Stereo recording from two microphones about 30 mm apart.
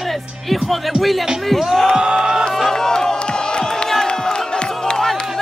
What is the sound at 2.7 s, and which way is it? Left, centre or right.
Speech, centre.